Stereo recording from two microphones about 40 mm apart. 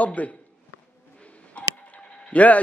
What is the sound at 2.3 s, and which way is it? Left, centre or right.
Speech, left.